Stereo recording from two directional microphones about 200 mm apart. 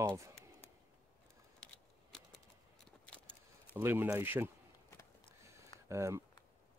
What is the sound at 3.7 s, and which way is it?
Speech, 10° right (ahead or behind).